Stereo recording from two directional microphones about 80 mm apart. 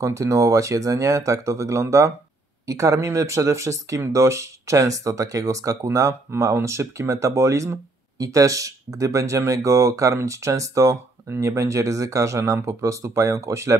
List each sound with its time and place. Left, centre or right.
0.0 s speech: right